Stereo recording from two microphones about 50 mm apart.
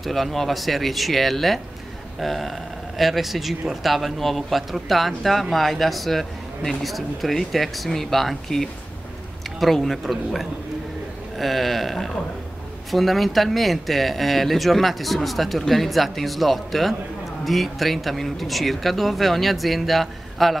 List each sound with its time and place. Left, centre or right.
0.0 s speech: centre